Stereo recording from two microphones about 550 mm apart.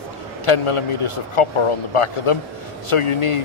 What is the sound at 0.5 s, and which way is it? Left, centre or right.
A man's voice, left.